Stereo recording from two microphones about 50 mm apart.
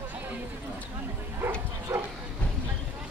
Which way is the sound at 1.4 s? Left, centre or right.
Right.